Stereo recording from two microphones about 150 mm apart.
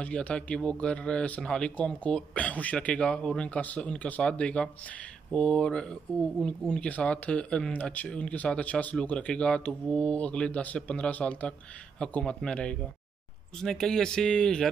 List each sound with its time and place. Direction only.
0.0 s speech: 10° left (ahead or behind)